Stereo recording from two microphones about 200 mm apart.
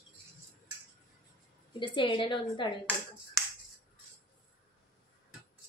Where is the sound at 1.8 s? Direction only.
25° left (ahead or behind).